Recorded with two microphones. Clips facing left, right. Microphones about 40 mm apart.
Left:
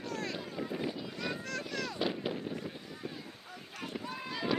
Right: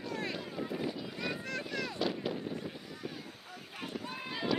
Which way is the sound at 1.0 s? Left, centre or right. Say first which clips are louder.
Even; centre.